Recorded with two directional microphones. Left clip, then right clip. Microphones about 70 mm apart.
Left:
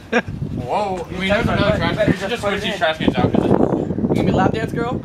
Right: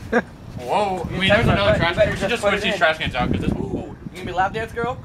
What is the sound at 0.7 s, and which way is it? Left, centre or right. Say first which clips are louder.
A man's voice: even; right.